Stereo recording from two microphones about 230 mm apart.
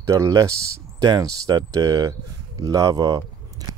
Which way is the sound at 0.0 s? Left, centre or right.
Centre.